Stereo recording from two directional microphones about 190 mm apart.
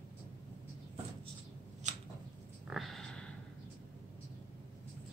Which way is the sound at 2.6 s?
Centre (ahead or behind).